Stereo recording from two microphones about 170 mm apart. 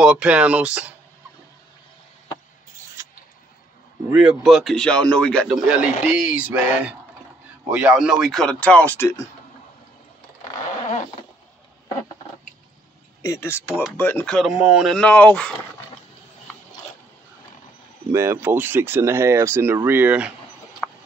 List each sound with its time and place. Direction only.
0.0 s speech: 5° right (ahead or behind)
4.1 s a man's voice: 5° right (ahead or behind); by 9.2 s 15° left (ahead or behind)
13.2 s speech: 15° left (ahead or behind)
18.1 s speech: 15° right (ahead or behind)